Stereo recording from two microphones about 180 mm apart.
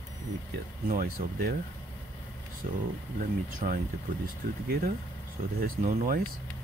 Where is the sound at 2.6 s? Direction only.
45° right (ahead or behind).